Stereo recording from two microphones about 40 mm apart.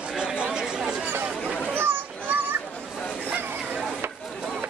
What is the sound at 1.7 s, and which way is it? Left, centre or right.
Children playing, right.